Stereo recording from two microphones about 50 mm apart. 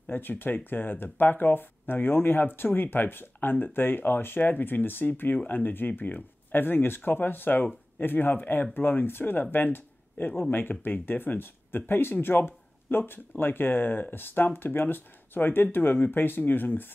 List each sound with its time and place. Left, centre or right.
0.1 s speech: left